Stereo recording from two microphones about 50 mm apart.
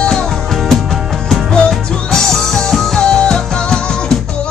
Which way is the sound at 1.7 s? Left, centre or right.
Centre.